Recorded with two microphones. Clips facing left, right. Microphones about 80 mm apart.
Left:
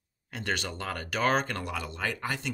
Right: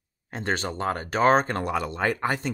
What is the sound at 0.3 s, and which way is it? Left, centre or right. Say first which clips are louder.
Speech: right 5 dB; right.